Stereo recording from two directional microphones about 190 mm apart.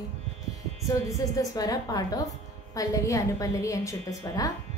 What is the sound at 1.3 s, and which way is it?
Female singing, 20° left (ahead or behind).